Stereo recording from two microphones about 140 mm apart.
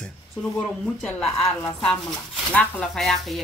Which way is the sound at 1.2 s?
40° left (ahead or behind).